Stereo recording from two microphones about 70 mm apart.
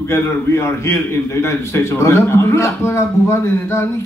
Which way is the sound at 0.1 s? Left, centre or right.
Left.